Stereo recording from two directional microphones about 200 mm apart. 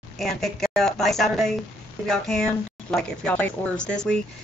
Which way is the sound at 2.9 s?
5° left (ahead or behind).